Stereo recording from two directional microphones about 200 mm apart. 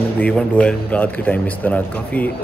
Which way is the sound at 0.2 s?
5° left (ahead or behind).